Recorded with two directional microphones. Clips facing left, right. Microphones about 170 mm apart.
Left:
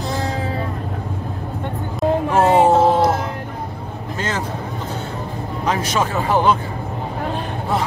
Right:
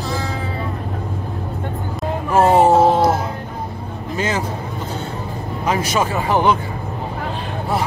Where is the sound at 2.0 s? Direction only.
Centre (ahead or behind).